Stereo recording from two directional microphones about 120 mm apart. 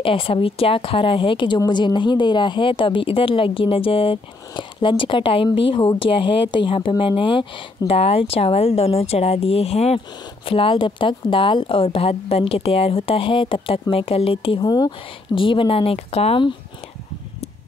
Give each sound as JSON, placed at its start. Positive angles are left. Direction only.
{"t": 0.0, "sound": "a woman's voice", "side_deg": 50}
{"t": 10.4, "sound": "a woman's voice", "side_deg": 50}
{"t": 14.6, "sound": "speech", "side_deg": 35}
{"t": 15.3, "sound": "a woman's voice", "side_deg": 45}